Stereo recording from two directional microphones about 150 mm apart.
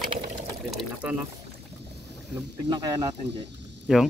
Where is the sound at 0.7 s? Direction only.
10° right (ahead or behind).